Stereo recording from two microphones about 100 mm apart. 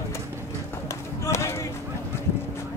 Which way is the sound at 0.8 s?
30° left (ahead or behind).